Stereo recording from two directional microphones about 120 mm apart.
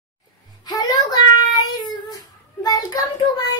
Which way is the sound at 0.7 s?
30° left (ahead or behind).